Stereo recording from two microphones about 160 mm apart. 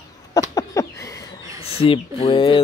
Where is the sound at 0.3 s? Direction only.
20° left (ahead or behind).